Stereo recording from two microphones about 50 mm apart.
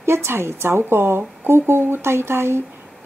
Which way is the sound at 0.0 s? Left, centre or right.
Right.